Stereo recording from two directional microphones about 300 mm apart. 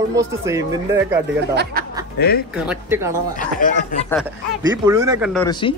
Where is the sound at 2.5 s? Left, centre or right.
Centre.